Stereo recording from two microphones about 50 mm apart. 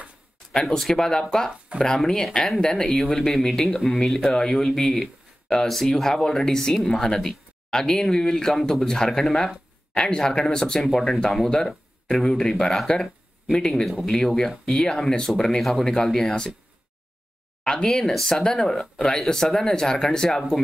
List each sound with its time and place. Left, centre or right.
0.5 s speech: centre
10.8 s speech: centre
17.8 s speech: centre